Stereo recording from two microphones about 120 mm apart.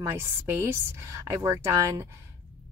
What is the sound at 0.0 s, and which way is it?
Speech, 20° right (ahead or behind).